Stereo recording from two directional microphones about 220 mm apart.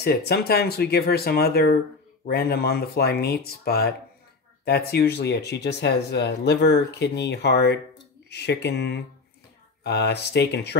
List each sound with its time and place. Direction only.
0.0 s speech: 45° left (ahead or behind)